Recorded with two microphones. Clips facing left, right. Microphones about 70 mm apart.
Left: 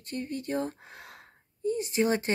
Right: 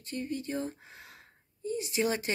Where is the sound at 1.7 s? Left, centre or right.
Left.